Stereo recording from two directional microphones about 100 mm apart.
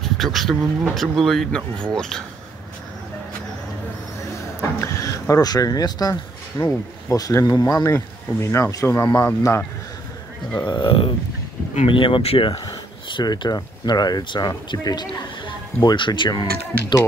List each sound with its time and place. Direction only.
0.0 s speech: centre (ahead or behind)
4.6 s a sound: 25° left (ahead or behind)
5.3 s speech: 35° left (ahead or behind)
10.6 s speech: 55° left (ahead or behind); by 12.4 s 70° left (ahead or behind)
12.4 s speech: 50° left (ahead or behind)